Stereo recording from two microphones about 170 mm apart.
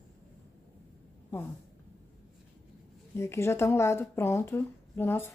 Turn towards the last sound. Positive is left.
turn(degrees=15)  # may be behind; listen again after turning